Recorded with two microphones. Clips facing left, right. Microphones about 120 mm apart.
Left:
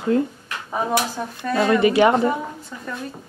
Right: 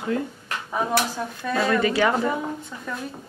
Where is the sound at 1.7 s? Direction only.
20° left (ahead or behind).